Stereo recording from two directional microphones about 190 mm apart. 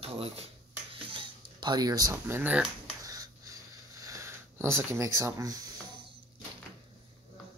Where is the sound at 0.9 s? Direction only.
25° right (ahead or behind).